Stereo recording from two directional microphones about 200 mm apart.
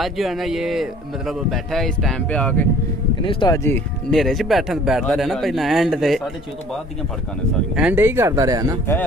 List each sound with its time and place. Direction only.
0.0 s speech: centre (ahead or behind)
3.3 s speech: 20° left (ahead or behind)
4.1 s speech: centre (ahead or behind)
7.7 s speech: 5° right (ahead or behind)